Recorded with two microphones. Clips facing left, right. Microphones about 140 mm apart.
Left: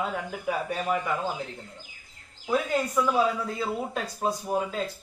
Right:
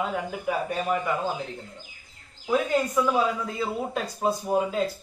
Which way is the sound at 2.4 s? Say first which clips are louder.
Right 2 dB; 5° right (ahead or behind).